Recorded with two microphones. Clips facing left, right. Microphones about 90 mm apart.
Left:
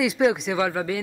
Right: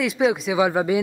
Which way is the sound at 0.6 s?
20° right (ahead or behind).